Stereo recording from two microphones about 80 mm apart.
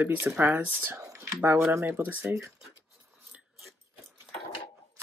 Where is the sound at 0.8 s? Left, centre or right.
Right.